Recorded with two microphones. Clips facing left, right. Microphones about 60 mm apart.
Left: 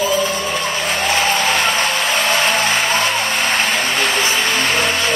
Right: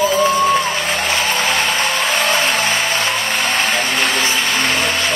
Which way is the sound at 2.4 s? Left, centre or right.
Left.